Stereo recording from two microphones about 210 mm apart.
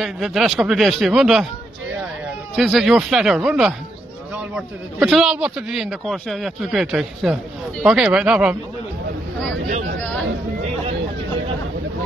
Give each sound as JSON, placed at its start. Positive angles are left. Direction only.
{"t": 0.0, "sound": "a man's voice", "side_deg": 0}
{"t": 2.5, "sound": "a man's voice", "side_deg": 0}